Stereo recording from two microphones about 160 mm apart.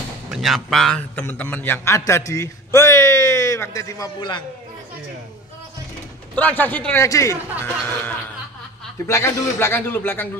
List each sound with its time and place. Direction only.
0.3 s a man's voice: centre (ahead or behind); by 4.4 s 25° left (ahead or behind)
6.3 s a man's voice: 10° left (ahead or behind)